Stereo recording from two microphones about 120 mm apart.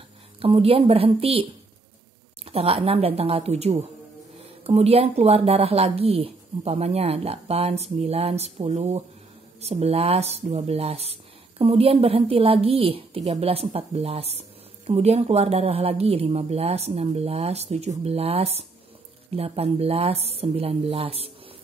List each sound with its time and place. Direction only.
0.4 s a woman's voice: 50° right (ahead or behind)
2.4 s speech: 55° right (ahead or behind)